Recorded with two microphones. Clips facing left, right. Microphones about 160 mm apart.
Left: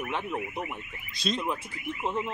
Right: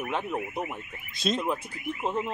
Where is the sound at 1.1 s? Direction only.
50° right (ahead or behind).